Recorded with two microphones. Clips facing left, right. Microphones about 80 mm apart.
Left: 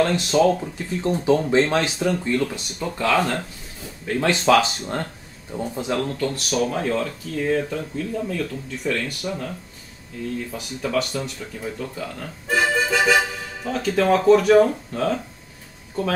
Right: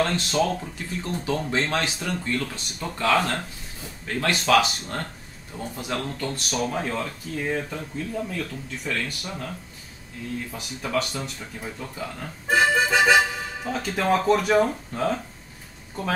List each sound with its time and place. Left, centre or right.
0.0 s speech: centre
1.0 s speech: left; by 3.3 s centre
4.2 s speech: left
5.9 s speech: centre
10.5 s speech: centre